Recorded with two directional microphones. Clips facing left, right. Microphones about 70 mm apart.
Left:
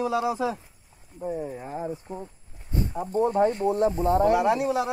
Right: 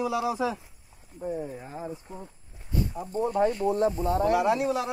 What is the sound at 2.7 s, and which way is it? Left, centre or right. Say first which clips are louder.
Speech: left 3 dB; left.